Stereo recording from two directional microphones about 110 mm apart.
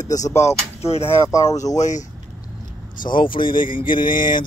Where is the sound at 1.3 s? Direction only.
30° left (ahead or behind).